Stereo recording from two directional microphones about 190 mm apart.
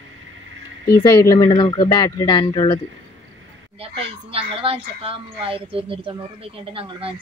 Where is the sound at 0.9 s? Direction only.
20° left (ahead or behind).